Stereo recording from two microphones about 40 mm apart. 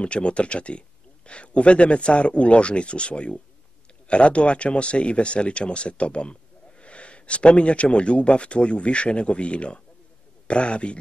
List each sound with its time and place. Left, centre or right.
0.0 s speech: left